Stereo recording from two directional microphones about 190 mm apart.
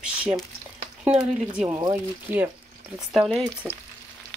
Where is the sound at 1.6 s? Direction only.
20° right (ahead or behind).